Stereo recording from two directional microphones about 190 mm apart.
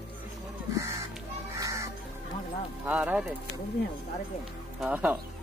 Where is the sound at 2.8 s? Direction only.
5° right (ahead or behind).